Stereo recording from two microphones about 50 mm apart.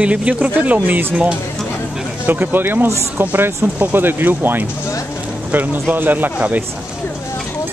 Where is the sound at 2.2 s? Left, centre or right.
Right.